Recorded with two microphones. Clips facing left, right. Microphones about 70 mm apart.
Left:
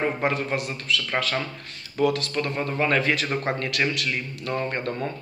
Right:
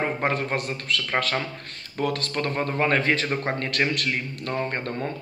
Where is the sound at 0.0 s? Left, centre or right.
Right.